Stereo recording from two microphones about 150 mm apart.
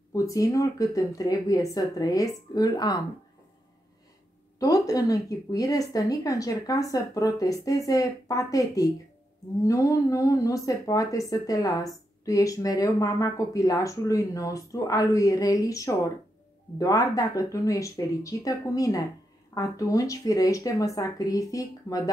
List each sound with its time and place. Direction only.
0.1 s a woman's voice: 20° left (ahead or behind)
4.6 s a woman's voice: 25° left (ahead or behind)